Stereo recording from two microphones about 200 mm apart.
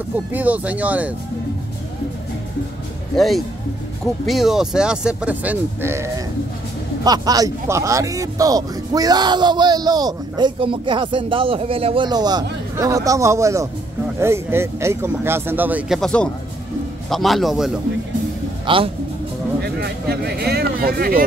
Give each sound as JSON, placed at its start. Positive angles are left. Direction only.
{"t": 0.3, "sound": "speech", "side_deg": -10}
{"t": 3.2, "sound": "a man's voice", "side_deg": 0}
{"t": 16.0, "sound": "a man's voice", "side_deg": 5}
{"t": 18.7, "sound": "speech", "side_deg": -25}
{"t": 19.8, "sound": "speech", "side_deg": -50}